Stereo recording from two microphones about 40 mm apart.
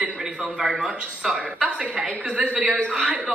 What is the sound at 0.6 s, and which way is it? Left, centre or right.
A woman's voice, right.